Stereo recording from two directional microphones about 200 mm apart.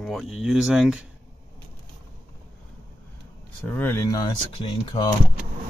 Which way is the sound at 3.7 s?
10° left (ahead or behind).